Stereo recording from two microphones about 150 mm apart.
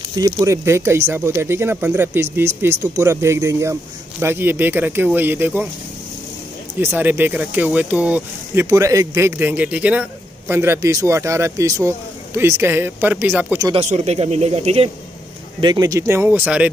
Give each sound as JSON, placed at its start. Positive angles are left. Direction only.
{"t": 0.1, "sound": "speech", "side_deg": -25}
{"t": 6.8, "sound": "speech", "side_deg": -15}
{"t": 8.6, "sound": "a man's voice", "side_deg": -20}
{"t": 13.7, "sound": "speech", "side_deg": -50}
{"t": 15.6, "sound": "speech", "side_deg": -25}